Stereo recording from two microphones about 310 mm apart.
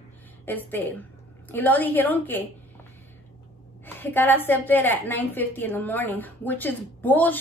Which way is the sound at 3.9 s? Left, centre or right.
Centre.